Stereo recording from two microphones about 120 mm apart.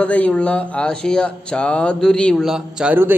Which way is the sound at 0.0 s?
10° left (ahead or behind).